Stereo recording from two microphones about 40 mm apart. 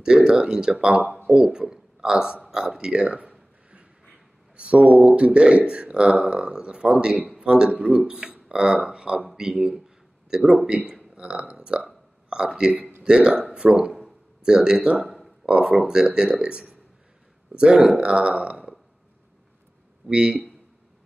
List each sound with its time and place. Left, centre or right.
0.0 s speech: centre
1.6 s speech: centre
3.2 s a sound: right
4.6 s speech: right
15.0 s a sound: centre
15.4 s speech: right
20.1 s speech: right